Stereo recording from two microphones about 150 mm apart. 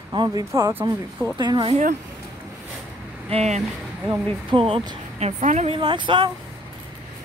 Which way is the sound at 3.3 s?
50° right (ahead or behind).